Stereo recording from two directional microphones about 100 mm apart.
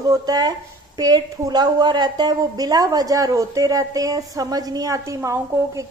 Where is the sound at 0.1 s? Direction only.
40° right (ahead or behind).